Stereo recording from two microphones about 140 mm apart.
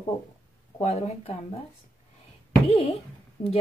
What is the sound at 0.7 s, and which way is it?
Speech, 50° left (ahead or behind).